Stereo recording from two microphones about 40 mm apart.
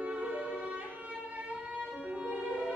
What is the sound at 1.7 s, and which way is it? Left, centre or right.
Violin, right.